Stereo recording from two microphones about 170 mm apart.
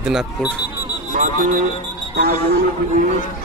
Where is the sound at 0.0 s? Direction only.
5° right (ahead or behind).